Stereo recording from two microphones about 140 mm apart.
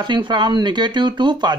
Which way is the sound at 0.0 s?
35° right (ahead or behind).